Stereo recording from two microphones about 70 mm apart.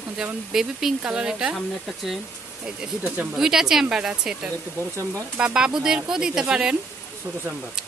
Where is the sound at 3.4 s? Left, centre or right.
Centre.